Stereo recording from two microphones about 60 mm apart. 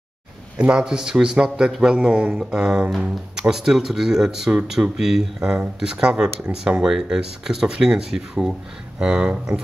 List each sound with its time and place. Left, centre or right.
0.6 s speech: centre